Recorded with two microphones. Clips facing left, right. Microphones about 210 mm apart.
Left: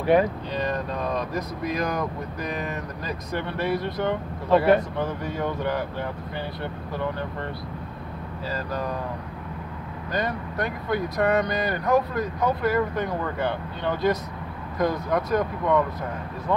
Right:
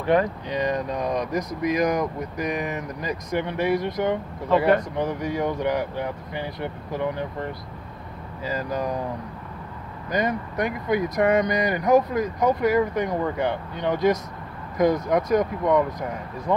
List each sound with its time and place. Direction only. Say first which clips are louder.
0.0 s speech: left 1 dB; 10° left (ahead or behind)
0.5 s speech: right 2 dB; 15° right (ahead or behind)
8.5 s speech: right 3 dB; 15° right (ahead or behind)
10.1 s speech: right 3 dB; 15° right (ahead or behind)